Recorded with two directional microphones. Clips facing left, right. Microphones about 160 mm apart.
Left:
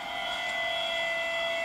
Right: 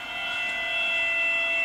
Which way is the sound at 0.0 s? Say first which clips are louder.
Left 3 dB; 35° left (ahead or behind).